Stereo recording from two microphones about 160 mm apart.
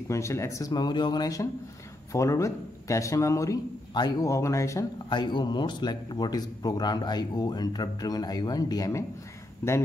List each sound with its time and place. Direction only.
0.1 s a man's voice: 20° left (ahead or behind)